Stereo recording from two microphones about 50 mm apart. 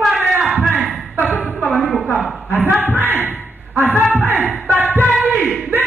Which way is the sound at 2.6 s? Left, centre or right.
Right.